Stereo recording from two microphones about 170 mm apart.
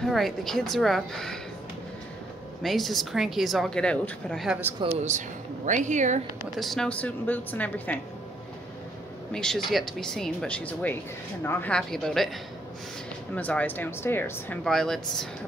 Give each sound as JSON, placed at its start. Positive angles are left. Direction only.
{"t": 0.0, "sound": "a woman's voice", "side_deg": 0}
{"t": 2.6, "sound": "a woman's voice", "side_deg": 0}
{"t": 4.8, "sound": "a woman's voice", "side_deg": -45}
{"t": 6.5, "sound": "speech", "side_deg": 0}
{"t": 9.3, "sound": "a woman's voice", "side_deg": 5}
{"t": 13.3, "sound": "speech", "side_deg": 10}